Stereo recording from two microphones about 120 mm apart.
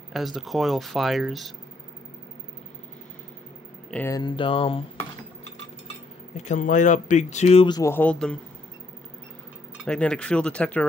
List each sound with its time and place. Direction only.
0.1 s speech: centre (ahead or behind)
4.1 s speech: 40° left (ahead or behind)
6.3 s speech: 85° left
7.8 s speech: 15° left (ahead or behind)
9.8 s speech: 10° left (ahead or behind)